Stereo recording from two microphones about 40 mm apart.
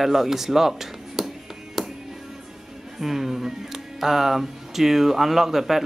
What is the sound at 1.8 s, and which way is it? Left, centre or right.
Music, centre.